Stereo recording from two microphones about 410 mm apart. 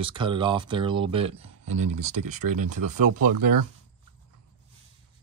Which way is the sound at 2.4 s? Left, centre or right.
Right.